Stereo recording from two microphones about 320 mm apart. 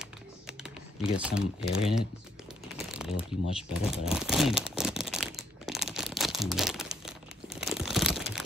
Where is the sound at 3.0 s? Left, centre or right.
Centre.